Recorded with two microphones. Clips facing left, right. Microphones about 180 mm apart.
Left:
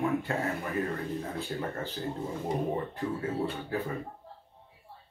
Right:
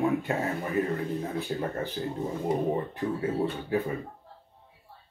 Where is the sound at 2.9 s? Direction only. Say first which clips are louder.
Right 3 dB; 20° right (ahead or behind).